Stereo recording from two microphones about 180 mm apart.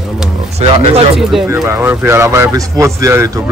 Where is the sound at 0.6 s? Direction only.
35° right (ahead or behind).